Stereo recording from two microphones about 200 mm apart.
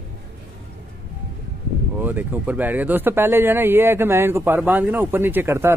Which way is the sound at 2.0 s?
10° right (ahead or behind).